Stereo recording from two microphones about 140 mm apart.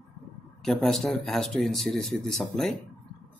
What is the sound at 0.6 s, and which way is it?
Speech, centre (ahead or behind).